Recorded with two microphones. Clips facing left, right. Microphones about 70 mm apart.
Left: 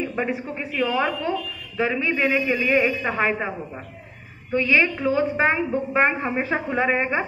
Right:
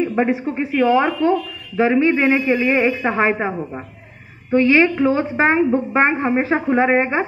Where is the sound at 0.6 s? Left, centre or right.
Right.